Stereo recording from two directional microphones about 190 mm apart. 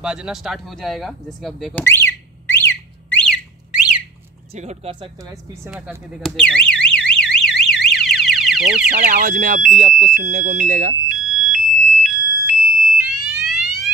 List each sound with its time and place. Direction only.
0.0 s speech: 5° right (ahead or behind)
1.9 s a sound: 10° left (ahead or behind)
3.7 s a sound: 5° right (ahead or behind)
4.6 s speech: 35° right (ahead or behind)
5.7 s alarm: 5° right (ahead or behind)
9.0 s speech: 45° right (ahead or behind)
11.5 s fire alarm: 5° right (ahead or behind)